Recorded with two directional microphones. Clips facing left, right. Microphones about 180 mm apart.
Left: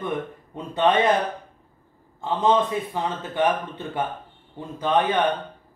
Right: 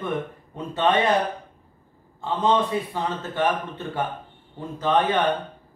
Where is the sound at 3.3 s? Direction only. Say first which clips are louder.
Left 2 dB; 15° left (ahead or behind).